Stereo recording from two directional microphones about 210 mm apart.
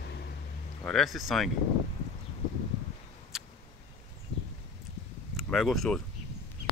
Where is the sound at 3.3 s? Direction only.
Centre (ahead or behind).